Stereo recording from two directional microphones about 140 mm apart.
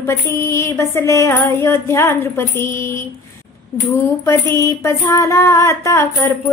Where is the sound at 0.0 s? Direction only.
20° left (ahead or behind).